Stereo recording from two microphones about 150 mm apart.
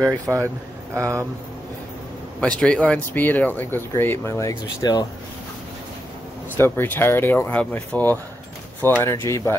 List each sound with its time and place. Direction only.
0.9 s speech: 20° right (ahead or behind)
2.4 s speech: 5° left (ahead or behind); by 5.0 s 25° left (ahead or behind)
6.5 s speech: 15° left (ahead or behind)